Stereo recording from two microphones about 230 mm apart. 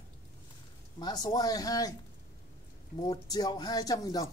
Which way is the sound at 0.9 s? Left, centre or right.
Centre.